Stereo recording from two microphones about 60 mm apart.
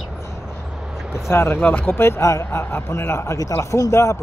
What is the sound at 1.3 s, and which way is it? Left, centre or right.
A man's voice, left.